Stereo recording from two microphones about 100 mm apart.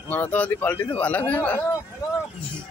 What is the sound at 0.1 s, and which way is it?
Speech, 15° left (ahead or behind).